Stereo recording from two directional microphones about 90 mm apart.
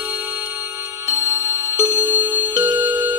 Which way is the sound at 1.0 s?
30° right (ahead or behind).